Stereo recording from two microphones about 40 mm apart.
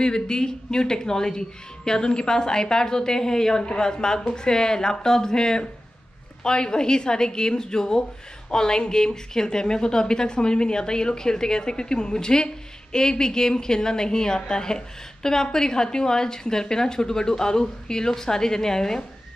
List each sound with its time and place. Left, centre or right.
0.0 s a woman's voice: centre